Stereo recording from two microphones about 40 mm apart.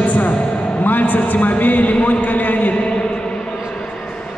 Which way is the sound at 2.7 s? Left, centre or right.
Left.